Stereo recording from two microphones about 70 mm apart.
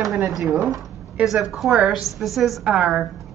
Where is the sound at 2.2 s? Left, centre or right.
Centre.